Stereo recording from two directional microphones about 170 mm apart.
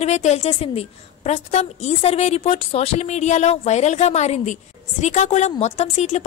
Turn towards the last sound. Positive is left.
turn(degrees=40)  # may be behind; listen again after turning